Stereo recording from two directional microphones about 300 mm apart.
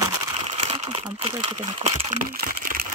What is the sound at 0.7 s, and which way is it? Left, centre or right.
Speech, centre.